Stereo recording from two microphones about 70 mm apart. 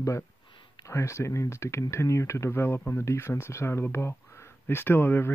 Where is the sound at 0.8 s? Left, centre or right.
Left.